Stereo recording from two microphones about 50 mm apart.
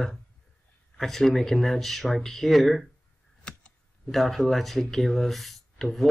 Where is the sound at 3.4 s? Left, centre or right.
Left.